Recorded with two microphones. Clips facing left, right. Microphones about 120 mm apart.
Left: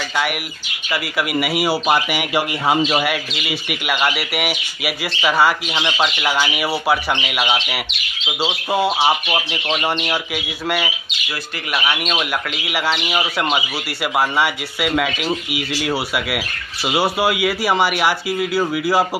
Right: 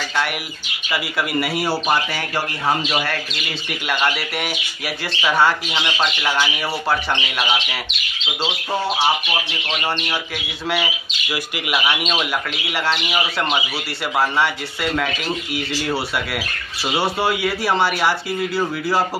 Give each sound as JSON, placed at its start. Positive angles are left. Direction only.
{"t": 0.9, "sound": "speech", "side_deg": 5}
{"t": 8.5, "sound": "speech", "side_deg": 20}
{"t": 10.3, "sound": "speech", "side_deg": 0}